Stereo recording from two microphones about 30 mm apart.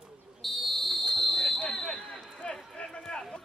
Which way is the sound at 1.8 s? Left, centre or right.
Left.